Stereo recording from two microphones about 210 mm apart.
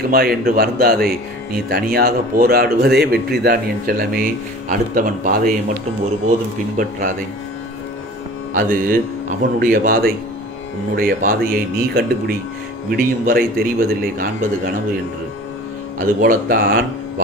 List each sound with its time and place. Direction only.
0.1 s speech: 45° right (ahead or behind)
6.8 s speech: 40° right (ahead or behind)
8.5 s speech: 40° right (ahead or behind)
16.0 s speech: 40° right (ahead or behind)